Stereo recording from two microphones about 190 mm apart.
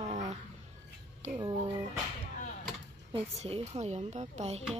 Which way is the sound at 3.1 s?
30° right (ahead or behind).